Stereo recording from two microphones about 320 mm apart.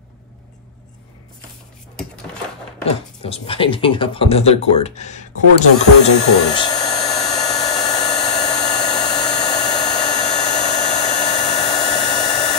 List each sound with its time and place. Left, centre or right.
3.3 s speech: centre
5.8 s hair dryer: centre